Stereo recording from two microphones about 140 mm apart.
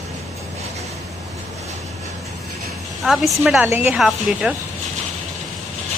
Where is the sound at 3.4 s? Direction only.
10° right (ahead or behind).